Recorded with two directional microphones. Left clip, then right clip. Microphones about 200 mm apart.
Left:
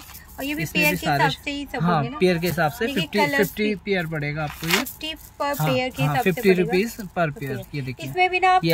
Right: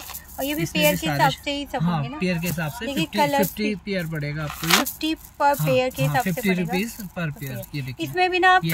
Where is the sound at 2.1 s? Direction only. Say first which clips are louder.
Left 6 dB; 20° left (ahead or behind).